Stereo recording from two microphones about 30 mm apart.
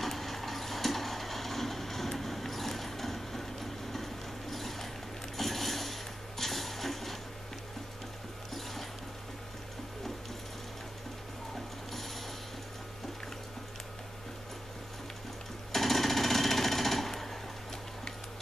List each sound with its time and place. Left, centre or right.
0.0 s a sound: centre
11.5 s mechanisms: centre
15.7 s jackhammer: centre